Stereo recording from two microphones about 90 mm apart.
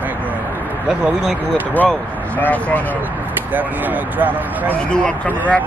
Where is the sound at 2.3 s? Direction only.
20° left (ahead or behind).